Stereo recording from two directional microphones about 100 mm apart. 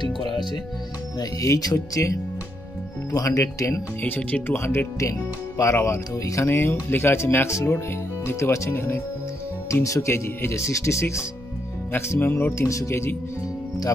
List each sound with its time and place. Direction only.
0.0 s speech: 50° left (ahead or behind)
1.4 s speech: 35° left (ahead or behind)
4.0 s speech: 15° left (ahead or behind)